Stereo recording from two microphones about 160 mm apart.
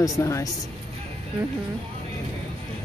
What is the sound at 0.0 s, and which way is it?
Speech, 20° left (ahead or behind).